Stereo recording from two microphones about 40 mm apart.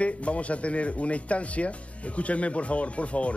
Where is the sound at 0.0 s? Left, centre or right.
Left.